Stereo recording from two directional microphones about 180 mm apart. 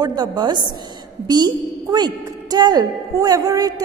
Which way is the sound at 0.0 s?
25° right (ahead or behind).